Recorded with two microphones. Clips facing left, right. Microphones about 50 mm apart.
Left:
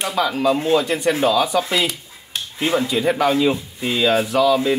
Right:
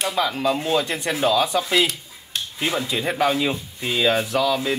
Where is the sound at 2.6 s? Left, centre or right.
Left.